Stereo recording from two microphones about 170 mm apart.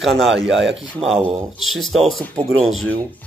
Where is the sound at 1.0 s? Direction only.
35° right (ahead or behind).